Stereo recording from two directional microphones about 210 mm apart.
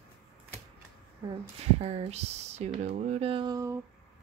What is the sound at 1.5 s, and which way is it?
Speech, 30° right (ahead or behind).